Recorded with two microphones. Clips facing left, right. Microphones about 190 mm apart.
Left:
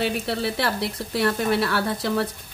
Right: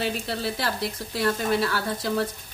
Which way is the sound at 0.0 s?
65° left (ahead or behind).